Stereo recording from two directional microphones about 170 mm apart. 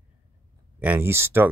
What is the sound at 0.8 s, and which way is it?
Speech, 10° right (ahead or behind).